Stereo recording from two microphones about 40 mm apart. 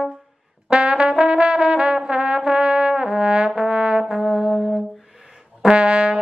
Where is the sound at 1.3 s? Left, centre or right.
Centre.